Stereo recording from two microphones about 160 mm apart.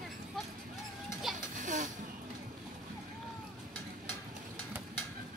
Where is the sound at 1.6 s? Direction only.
55° right (ahead or behind).